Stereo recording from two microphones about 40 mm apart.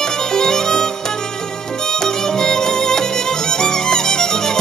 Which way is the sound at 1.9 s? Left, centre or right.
Centre.